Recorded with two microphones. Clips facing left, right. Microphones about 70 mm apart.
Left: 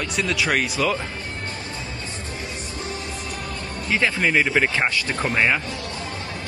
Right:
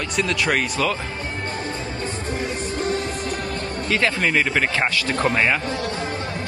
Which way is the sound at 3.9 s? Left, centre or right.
Centre.